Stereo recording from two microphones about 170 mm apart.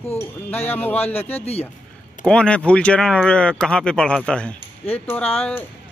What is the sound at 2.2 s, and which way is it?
Speech, 5° left (ahead or behind).